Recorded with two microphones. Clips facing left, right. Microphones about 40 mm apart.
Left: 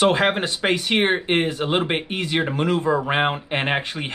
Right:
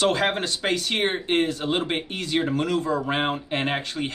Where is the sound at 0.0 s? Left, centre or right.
Left.